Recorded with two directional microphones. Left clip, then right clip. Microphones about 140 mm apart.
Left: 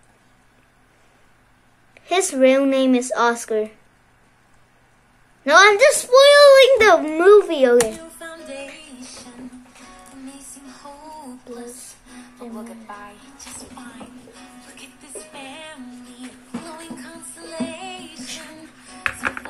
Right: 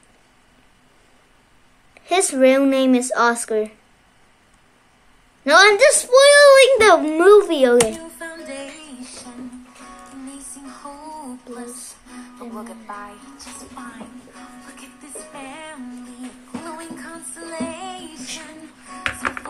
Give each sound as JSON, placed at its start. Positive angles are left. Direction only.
{"t": 2.0, "sound": "a child's voice", "side_deg": -10}
{"t": 5.4, "sound": "a child's voice", "side_deg": -10}
{"t": 8.5, "sound": "music", "side_deg": -10}
{"t": 11.1, "sound": "a sound", "side_deg": -10}
{"t": 12.4, "sound": "speech", "side_deg": -10}
{"t": 15.3, "sound": "music", "side_deg": 15}
{"t": 15.7, "sound": "music", "side_deg": 0}
{"t": 17.7, "sound": "music", "side_deg": 15}